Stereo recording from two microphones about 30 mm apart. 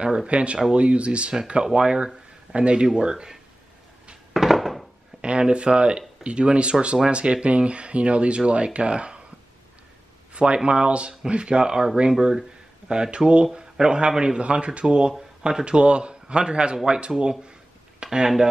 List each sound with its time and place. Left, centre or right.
0.3 s a man's voice: right
4.3 s a sound: centre
5.2 s speech: right
10.3 s speech: right
13.6 s a man's voice: right
14.4 s a man's voice: right